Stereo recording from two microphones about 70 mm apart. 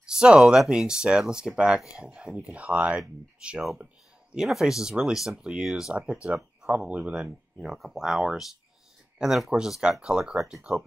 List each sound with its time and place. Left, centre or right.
0.1 s a sound: centre
0.5 s speech: centre
4.5 s speech: centre
5.9 s speech: centre
7.5 s speech: centre
10.6 s speech: centre